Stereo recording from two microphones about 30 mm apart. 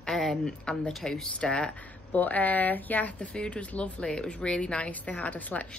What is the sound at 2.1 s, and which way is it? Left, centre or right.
A woman's voice, left.